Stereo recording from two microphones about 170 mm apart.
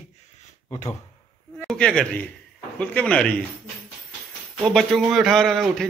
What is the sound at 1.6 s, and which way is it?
A man's voice, 5° left (ahead or behind).